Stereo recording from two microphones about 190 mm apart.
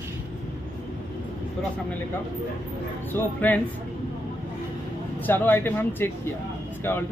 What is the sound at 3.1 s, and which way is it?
Speech, 10° left (ahead or behind).